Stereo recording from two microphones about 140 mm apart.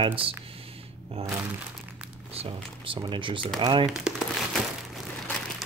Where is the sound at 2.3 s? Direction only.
40° right (ahead or behind).